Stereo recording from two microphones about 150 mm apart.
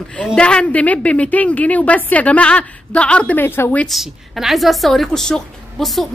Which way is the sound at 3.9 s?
Centre (ahead or behind).